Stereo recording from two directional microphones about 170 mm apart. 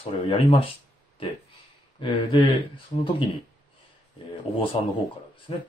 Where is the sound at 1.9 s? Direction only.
30° left (ahead or behind).